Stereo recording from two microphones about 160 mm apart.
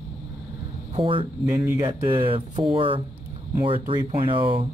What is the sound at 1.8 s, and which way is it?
Speech, 35° right (ahead or behind).